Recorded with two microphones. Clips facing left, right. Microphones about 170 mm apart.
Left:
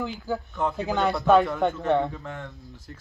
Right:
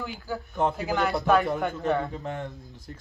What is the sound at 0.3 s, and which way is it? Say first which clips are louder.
Speech: left 4 dB; 20° left (ahead or behind).